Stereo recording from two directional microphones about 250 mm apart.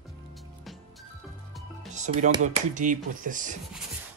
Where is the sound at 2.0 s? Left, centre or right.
Right.